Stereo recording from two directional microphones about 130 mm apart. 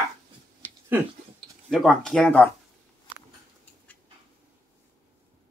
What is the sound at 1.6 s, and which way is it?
Speech, centre (ahead or behind).